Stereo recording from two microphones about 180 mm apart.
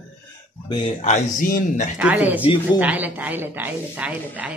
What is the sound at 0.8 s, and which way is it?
Speech, 40° left (ahead or behind).